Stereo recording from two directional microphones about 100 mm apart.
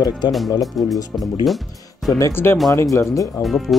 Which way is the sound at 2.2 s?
25° left (ahead or behind).